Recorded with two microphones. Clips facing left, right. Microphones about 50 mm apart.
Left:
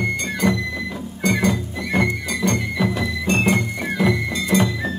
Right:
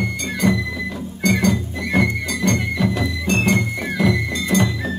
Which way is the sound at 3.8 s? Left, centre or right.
Centre.